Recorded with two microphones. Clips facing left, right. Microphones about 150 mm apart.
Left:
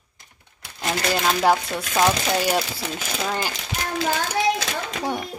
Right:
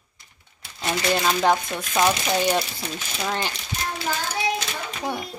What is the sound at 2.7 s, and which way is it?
Speech, 90° left.